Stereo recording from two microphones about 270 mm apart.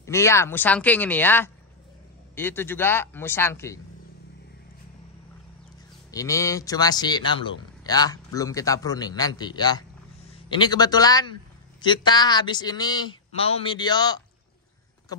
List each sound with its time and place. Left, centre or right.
0.0 s a man's voice: centre
6.1 s a man's voice: centre